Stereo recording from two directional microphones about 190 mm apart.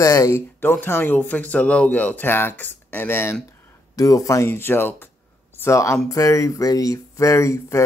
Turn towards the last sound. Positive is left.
turn(degrees=15)  # may be behind; listen again after turning